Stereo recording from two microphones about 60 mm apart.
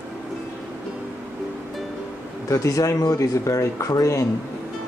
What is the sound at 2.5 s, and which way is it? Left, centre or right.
Speech, left.